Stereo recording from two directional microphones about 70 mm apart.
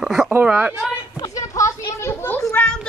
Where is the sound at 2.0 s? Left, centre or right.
Left.